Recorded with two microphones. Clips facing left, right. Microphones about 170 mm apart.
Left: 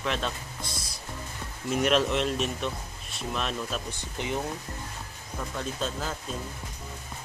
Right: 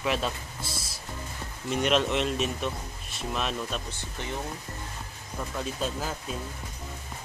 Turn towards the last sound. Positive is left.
turn(degrees=-10)  # may be behind; listen again after turning